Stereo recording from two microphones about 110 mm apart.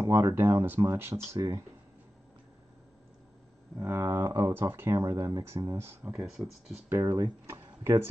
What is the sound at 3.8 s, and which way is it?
Speech, 20° right (ahead or behind).